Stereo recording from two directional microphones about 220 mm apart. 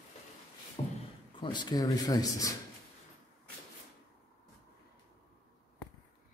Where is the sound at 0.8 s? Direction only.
25° left (ahead or behind).